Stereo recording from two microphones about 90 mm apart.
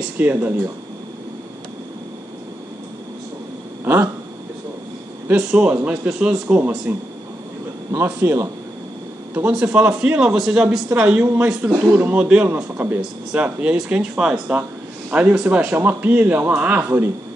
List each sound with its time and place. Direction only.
0.2 s a man's voice: 20° right (ahead or behind)
3.8 s a man's voice: 25° right (ahead or behind)
5.3 s a man's voice: 10° right (ahead or behind)
6.9 s a man's voice: 20° right (ahead or behind)
9.3 s a man's voice: 15° right (ahead or behind)